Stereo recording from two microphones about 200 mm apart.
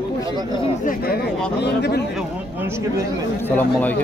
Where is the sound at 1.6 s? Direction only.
55° left (ahead or behind).